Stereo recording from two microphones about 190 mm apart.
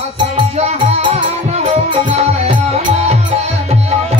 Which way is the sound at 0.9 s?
30° right (ahead or behind).